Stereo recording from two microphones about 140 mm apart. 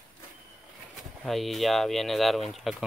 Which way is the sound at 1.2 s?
Centre (ahead or behind).